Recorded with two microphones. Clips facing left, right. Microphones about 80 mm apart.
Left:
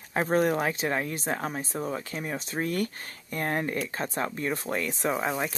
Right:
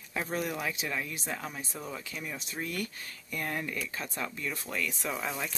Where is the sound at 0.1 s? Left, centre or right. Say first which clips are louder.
Left 9 dB; left.